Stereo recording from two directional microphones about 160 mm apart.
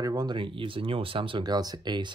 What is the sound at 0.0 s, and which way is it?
Speech, 25° right (ahead or behind).